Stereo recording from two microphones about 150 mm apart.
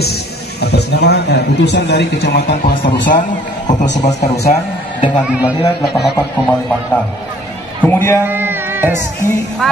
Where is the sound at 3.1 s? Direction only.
60° left (ahead or behind).